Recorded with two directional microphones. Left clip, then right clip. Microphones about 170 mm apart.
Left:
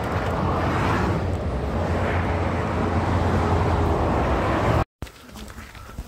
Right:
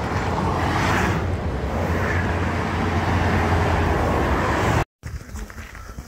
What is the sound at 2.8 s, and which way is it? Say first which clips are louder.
Vehicle: right 3 dB; 40° right (ahead or behind).